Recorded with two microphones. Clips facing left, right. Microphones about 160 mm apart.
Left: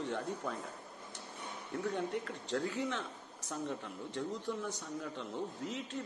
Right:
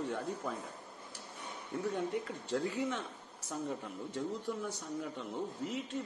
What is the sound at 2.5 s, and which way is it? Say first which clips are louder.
Speech: right 1 dB; 5° right (ahead or behind).